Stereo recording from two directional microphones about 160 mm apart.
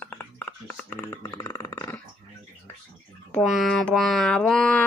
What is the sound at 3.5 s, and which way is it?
Mantra, centre (ahead or behind).